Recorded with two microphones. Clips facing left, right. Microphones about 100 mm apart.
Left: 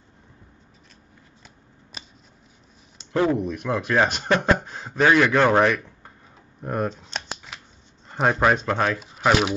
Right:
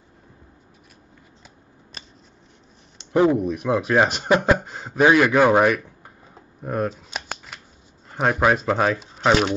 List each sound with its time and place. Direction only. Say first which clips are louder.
2.0 s scissors: left 1 dB; centre (ahead or behind)
3.1 s a man's voice: right 4 dB; 15° right (ahead or behind)
6.6 s shuffling cards: right 1 dB; centre (ahead or behind)
8.1 s speech: right 1 dB; centre (ahead or behind)